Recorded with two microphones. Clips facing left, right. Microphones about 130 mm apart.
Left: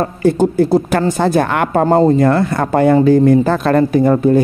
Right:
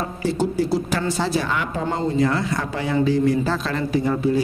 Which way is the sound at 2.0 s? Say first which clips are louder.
Left 8 dB; 50° left (ahead or behind).